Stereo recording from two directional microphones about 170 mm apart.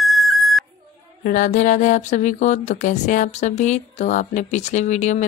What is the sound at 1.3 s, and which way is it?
Speech, 50° left (ahead or behind).